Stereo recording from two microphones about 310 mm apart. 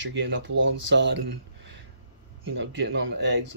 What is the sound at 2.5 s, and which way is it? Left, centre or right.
Speech, right.